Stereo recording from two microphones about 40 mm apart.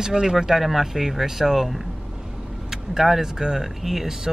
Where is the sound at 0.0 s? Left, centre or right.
Centre.